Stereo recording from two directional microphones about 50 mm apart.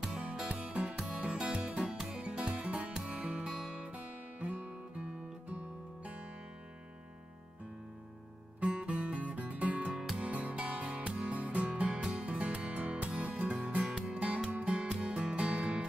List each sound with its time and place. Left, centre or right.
0.5 s music: right
1.9 s music: centre
2.1 s music: right
8.5 s music: right
13.8 s music: centre
14.2 s music: right